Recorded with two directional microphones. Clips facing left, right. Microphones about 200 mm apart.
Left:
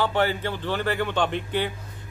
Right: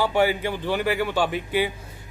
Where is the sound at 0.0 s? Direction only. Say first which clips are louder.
Right 2 dB; 10° right (ahead or behind).